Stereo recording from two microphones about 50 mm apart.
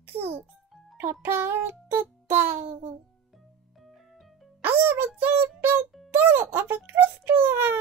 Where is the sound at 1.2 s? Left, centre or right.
Right.